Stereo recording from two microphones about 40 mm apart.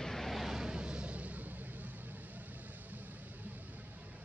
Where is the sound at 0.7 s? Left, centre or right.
Right.